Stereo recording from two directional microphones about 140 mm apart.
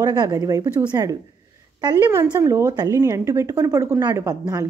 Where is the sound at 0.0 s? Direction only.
25° right (ahead or behind).